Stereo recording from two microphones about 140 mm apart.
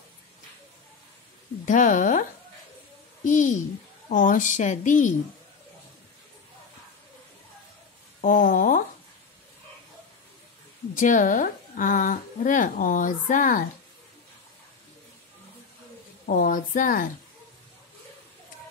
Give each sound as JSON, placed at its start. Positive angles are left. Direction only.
{"t": 1.7, "sound": "a woman's voice", "side_deg": 65}
{"t": 3.3, "sound": "a woman's voice", "side_deg": 65}
{"t": 8.2, "sound": "a sound", "side_deg": 80}
{"t": 11.0, "sound": "a woman's voice", "side_deg": 70}
{"t": 16.3, "sound": "a woman's voice", "side_deg": 75}